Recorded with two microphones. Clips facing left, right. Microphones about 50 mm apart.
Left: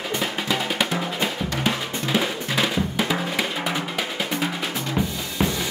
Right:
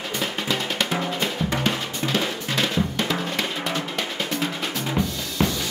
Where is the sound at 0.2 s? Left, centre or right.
Centre.